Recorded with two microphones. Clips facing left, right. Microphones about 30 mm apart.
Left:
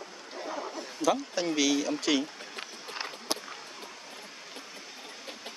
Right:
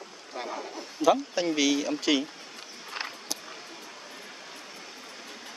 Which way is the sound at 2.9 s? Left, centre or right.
Centre.